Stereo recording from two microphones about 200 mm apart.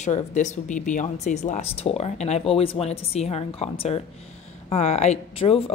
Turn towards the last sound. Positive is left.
turn(degrees=30)  # may be behind; listen again after turning